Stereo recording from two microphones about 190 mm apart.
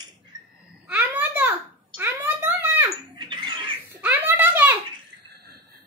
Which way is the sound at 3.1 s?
25° right (ahead or behind).